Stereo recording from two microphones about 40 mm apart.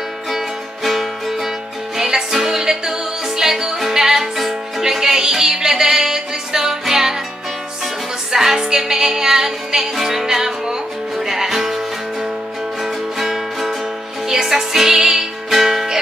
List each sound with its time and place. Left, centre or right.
0.8 s music: centre